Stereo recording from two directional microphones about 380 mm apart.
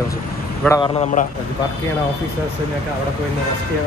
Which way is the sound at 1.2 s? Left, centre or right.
Left.